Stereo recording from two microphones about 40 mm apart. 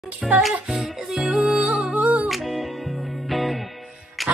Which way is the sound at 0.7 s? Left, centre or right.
Right.